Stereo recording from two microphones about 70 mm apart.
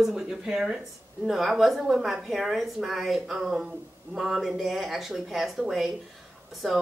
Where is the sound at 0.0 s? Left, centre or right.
Centre.